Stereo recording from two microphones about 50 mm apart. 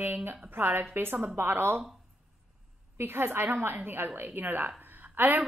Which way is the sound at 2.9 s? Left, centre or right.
Right.